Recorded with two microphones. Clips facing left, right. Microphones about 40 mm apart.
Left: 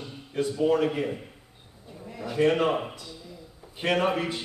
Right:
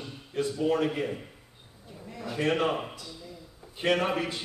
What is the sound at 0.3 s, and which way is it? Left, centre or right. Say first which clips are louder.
Speech: left 2 dB; left.